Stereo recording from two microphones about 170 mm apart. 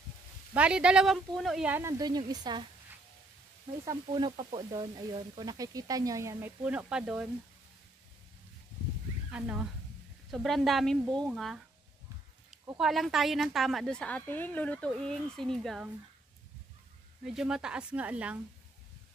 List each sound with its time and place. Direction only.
0.6 s speech: 5° right (ahead or behind); by 2.6 s 25° right (ahead or behind)
3.8 s speech: 25° right (ahead or behind); by 7.2 s 5° right (ahead or behind)
9.3 s a woman's voice: 5° right (ahead or behind)
12.7 s a woman's voice: centre (ahead or behind)
17.2 s a woman's voice: 5° right (ahead or behind)